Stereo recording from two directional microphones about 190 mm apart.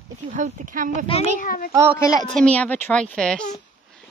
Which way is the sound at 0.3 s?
40° right (ahead or behind).